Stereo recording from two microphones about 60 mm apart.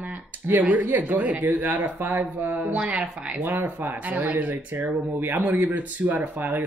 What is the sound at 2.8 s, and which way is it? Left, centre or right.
Speech, centre.